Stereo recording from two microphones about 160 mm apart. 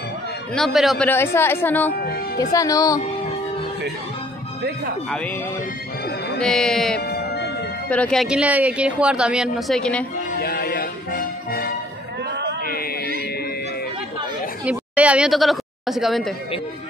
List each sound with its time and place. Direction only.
0.6 s speech: centre (ahead or behind)
1.0 s a woman's voice: 15° left (ahead or behind)
2.0 s music: 75° left (ahead or behind)
2.5 s speech: 20° left (ahead or behind)
6.0 s music: 90° left
6.4 s speech: 5° left (ahead or behind)
7.0 s music: 80° left
7.9 s speech: 5° left (ahead or behind)
10.4 s music: 70° left (ahead or behind)
12.6 s a sound: 70° left (ahead or behind)
14.6 s a woman's voice: 10° right (ahead or behind)